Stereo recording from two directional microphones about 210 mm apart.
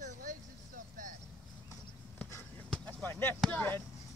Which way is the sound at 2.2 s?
5° left (ahead or behind).